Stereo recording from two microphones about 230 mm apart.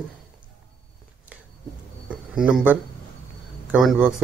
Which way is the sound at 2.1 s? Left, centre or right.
Centre.